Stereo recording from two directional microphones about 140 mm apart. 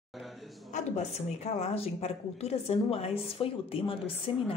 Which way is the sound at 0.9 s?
50° left (ahead or behind).